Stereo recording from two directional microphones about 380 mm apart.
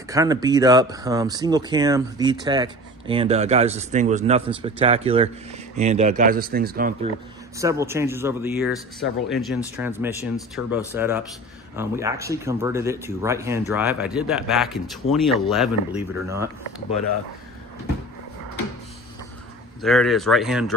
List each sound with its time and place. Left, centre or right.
0.1 s speech: centre
7.5 s speech: centre
9.0 s speech: left
9.5 s speech: centre
19.8 s speech: centre